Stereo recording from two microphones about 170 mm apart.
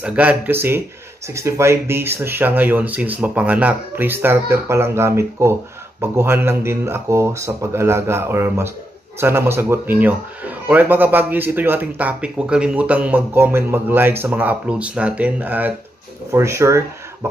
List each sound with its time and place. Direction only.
0.0 s speech: 10° right (ahead or behind)